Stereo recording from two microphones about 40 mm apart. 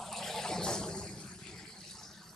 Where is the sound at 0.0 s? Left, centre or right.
Centre.